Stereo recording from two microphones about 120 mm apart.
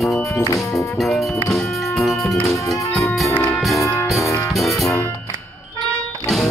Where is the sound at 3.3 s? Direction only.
10° left (ahead or behind).